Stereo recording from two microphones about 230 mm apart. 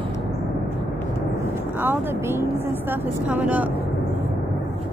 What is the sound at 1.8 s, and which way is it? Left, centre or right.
Speech, centre.